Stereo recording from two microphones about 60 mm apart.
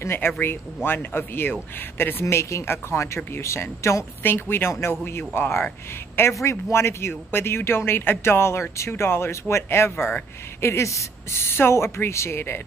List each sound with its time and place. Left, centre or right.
0.0 s speech: left
2.2 s speech: left
4.2 s speech: left
11.4 s speech: left